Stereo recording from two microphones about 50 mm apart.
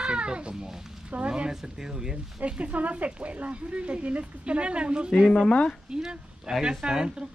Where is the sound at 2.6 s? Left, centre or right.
Right.